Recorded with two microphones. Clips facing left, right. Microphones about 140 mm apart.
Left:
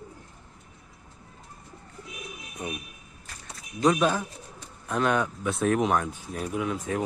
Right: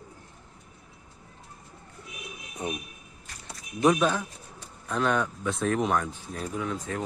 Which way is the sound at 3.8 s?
5° right (ahead or behind).